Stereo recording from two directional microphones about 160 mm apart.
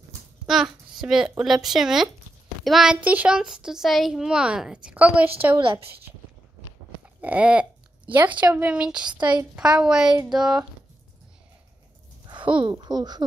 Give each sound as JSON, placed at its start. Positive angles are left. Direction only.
{"t": 0.5, "sound": "a child's voice", "side_deg": 0}
{"t": 7.2, "sound": "speech", "side_deg": -10}
{"t": 9.1, "sound": "speech", "side_deg": -30}
{"t": 9.6, "sound": "a child's voice", "side_deg": -5}
{"t": 12.6, "sound": "speech", "side_deg": -25}